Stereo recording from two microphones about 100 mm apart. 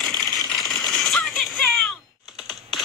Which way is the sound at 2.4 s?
Centre (ahead or behind).